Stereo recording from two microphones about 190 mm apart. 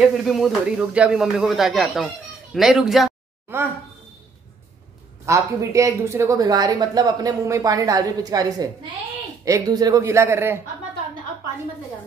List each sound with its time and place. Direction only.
0.0 s speech: centre (ahead or behind)
5.2 s speech: 15° right (ahead or behind)